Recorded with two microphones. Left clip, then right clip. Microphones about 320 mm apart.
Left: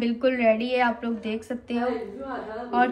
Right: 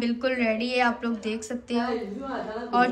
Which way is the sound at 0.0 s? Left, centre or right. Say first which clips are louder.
Left 4 dB; centre.